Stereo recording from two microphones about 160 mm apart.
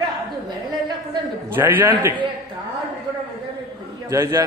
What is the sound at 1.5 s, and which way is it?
Speech, 10° right (ahead or behind).